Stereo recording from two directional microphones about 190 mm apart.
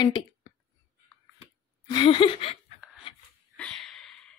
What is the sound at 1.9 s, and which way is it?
Laughter, 25° left (ahead or behind).